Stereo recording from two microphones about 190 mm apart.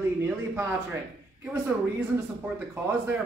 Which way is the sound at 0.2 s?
10° right (ahead or behind).